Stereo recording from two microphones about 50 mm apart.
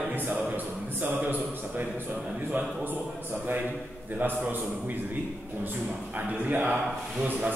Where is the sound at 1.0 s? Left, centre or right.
Right.